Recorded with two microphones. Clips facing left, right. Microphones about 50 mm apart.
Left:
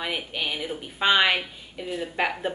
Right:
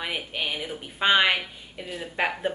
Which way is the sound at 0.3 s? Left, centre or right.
Centre.